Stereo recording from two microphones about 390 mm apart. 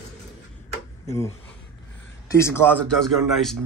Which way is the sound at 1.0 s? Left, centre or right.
Centre.